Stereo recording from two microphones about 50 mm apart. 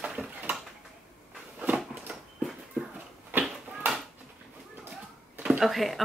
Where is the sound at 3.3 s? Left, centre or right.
Right.